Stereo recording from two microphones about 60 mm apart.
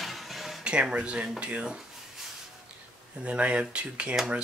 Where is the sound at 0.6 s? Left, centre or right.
Centre.